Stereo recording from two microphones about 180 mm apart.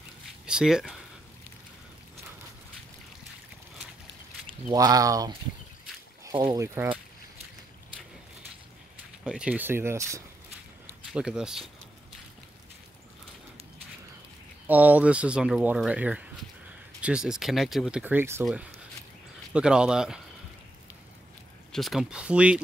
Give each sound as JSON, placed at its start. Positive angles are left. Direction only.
{"t": 0.5, "sound": "speech", "side_deg": -5}
{"t": 4.6, "sound": "speech", "side_deg": -20}
{"t": 6.4, "sound": "speech", "side_deg": -15}
{"t": 9.2, "sound": "speech", "side_deg": -5}
{"t": 11.1, "sound": "speech", "side_deg": -5}
{"t": 14.7, "sound": "speech", "side_deg": -10}
{"t": 21.7, "sound": "speech", "side_deg": 0}